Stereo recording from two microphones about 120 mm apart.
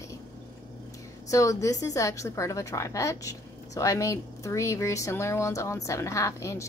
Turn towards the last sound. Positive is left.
turn(degrees=25)  # may be behind; listen again after turning